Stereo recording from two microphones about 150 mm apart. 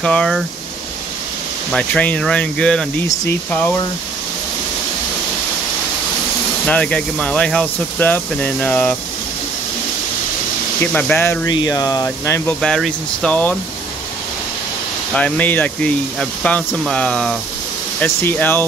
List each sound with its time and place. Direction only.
0.0 s speech: 5° left (ahead or behind)
1.7 s speech: 10° left (ahead or behind)
3.1 s speech: 15° left (ahead or behind)
6.7 s speech: 5° left (ahead or behind)
10.9 s speech: 10° left (ahead or behind)
11.4 s speech: 25° left (ahead or behind)
12.4 s speech: 5° left (ahead or behind)
15.1 s speech: 10° left (ahead or behind)